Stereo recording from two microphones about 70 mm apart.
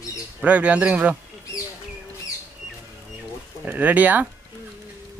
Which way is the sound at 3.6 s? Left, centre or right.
Right.